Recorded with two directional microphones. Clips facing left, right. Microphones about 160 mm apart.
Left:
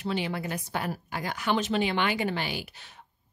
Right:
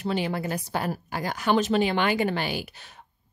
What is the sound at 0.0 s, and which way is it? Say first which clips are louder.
Speech: right 3 dB; 45° right (ahead or behind).